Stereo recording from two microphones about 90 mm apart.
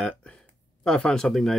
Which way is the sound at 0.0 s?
10° left (ahead or behind).